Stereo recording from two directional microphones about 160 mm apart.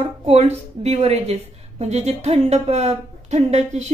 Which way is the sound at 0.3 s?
40° right (ahead or behind).